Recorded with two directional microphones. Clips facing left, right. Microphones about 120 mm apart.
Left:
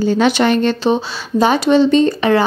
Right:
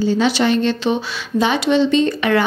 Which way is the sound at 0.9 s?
40° left (ahead or behind).